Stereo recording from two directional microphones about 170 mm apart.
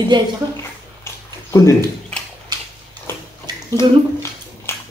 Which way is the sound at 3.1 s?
15° left (ahead or behind).